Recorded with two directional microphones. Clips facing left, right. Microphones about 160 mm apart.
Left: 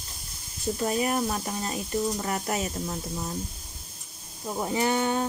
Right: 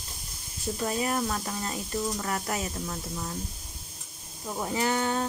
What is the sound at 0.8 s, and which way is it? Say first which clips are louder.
Speech: left 2 dB; 20° left (ahead or behind).